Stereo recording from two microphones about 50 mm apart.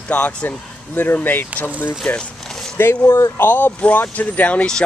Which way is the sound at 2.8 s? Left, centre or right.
Left.